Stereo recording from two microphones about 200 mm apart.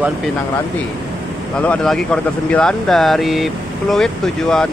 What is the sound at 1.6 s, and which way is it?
Speech, 5° left (ahead or behind).